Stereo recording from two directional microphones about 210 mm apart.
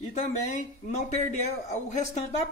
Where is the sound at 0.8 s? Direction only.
35° left (ahead or behind).